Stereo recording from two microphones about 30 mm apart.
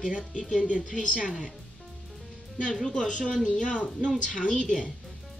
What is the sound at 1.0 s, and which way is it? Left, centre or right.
Speech, right.